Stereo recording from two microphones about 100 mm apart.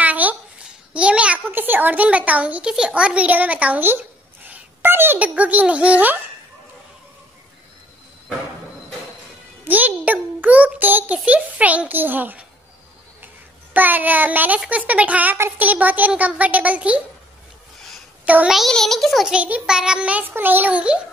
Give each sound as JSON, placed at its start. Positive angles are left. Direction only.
{"t": 0.0, "sound": "a sound", "side_deg": -15}
{"t": 0.9, "sound": "a child's voice", "side_deg": -10}
{"t": 9.7, "sound": "a child's voice", "side_deg": -15}
{"t": 13.7, "sound": "a child's voice", "side_deg": -20}
{"t": 18.2, "sound": "a child's voice", "side_deg": -15}
{"t": 18.5, "sound": "a child's voice", "side_deg": 0}